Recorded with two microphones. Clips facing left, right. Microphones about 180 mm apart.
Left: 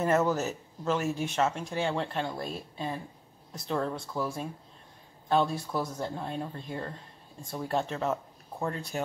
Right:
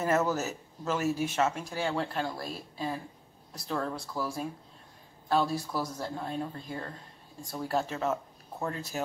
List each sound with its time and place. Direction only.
0.3 s speech: 5° right (ahead or behind)